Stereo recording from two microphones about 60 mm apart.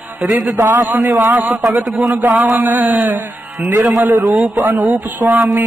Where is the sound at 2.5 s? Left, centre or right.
Right.